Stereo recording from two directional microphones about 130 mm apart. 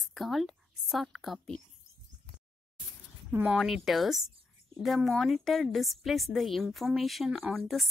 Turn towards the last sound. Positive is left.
turn(degrees=0)  # may be behind; listen again after turning